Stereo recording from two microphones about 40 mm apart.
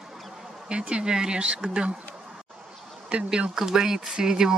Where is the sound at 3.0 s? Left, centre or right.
Right.